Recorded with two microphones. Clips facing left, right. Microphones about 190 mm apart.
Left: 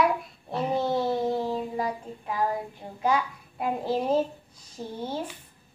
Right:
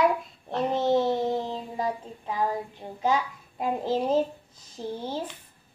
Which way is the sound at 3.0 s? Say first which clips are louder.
Even; 20° right (ahead or behind).